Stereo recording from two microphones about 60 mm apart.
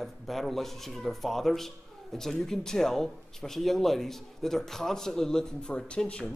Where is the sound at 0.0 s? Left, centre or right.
Centre.